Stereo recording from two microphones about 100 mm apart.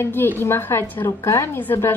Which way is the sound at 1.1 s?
30° left (ahead or behind).